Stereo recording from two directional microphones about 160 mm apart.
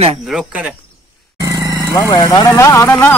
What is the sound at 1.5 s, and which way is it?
Vehicle, 20° right (ahead or behind).